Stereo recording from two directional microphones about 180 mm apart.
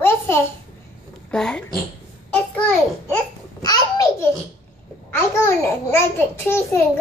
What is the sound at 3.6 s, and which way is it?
Babbling, 20° left (ahead or behind).